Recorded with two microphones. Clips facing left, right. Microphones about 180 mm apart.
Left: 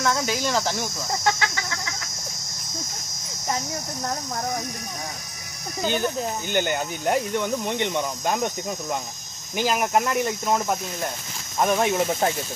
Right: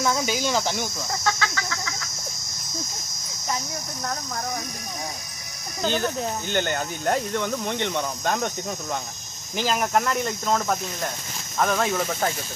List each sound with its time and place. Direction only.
0.0 s speech: 5° right (ahead or behind)
1.2 s a sound: 20° left (ahead or behind)
5.8 s speech: 5° left (ahead or behind)
9.6 s speech: 10° left (ahead or behind)